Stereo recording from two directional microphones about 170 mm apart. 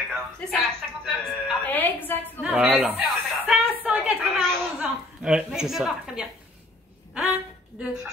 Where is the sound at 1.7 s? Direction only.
10° left (ahead or behind).